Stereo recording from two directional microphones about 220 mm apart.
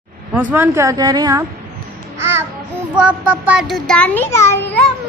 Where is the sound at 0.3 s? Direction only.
10° right (ahead or behind).